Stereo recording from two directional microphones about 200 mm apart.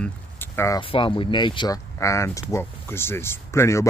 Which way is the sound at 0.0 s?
10° left (ahead or behind).